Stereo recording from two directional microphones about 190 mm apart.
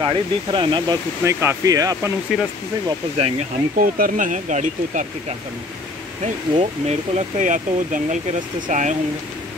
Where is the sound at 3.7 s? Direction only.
45° right (ahead or behind).